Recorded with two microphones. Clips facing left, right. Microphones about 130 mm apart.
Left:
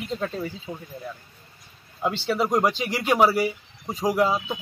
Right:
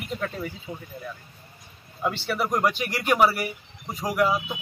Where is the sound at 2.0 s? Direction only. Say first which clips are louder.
Left 2 dB; 20° left (ahead or behind).